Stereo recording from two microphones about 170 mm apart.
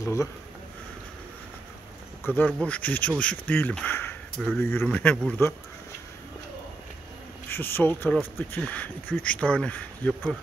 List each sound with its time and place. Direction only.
0.0 s speech: 15° left (ahead or behind)
2.2 s speech: 10° left (ahead or behind)
7.4 s speech: 15° left (ahead or behind)